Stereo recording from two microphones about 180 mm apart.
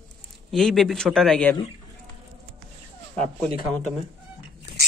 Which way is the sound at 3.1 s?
5° left (ahead or behind).